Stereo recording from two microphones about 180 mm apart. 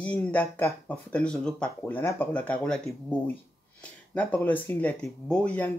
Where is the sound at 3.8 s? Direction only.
5° left (ahead or behind).